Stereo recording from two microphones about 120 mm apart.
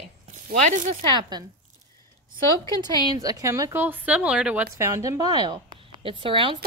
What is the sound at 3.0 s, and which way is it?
Speech, 35° right (ahead or behind).